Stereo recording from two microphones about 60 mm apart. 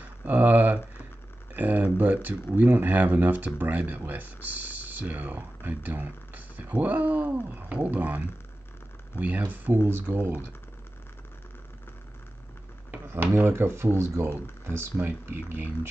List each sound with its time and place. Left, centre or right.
0.0 s speech: right
9.8 s speech: right
13.0 s speech: right
15.0 s speech: right